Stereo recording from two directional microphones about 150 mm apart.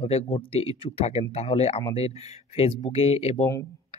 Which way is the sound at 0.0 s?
45° left (ahead or behind).